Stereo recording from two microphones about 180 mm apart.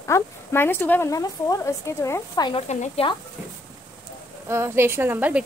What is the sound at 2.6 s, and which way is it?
Speech, 40° left (ahead or behind).